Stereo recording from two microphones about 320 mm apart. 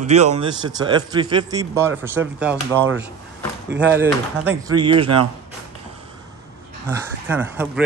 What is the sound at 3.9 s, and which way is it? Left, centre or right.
Speech, centre.